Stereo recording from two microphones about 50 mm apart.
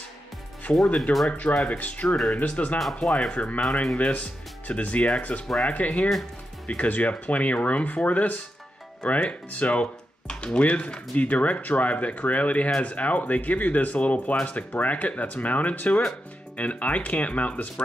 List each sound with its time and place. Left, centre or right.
0.7 s speech: left
2.8 s speech: centre
3.3 s speech: left
3.8 s speech: centre
4.1 s speech: left